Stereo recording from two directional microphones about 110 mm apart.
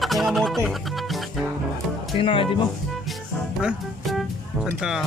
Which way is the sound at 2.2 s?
55° left (ahead or behind).